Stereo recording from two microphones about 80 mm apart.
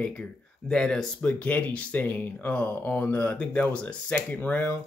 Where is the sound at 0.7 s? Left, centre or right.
Centre.